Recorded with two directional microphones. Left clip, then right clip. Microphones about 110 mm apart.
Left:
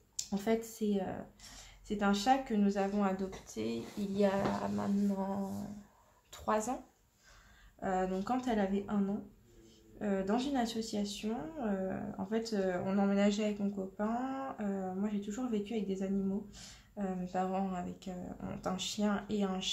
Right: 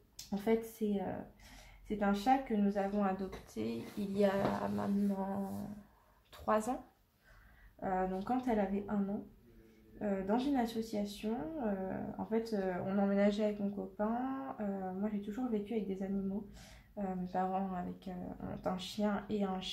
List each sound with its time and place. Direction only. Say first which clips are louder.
0.1 s speech: even; 20° left (ahead or behind)
7.8 s speech: left 2 dB; 20° left (ahead or behind)
9.9 s speech: left 1 dB; 20° left (ahead or behind)
13.9 s speech: even; 20° left (ahead or behind)